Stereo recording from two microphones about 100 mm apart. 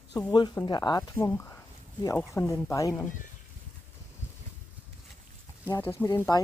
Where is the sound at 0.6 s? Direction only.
45° left (ahead or behind).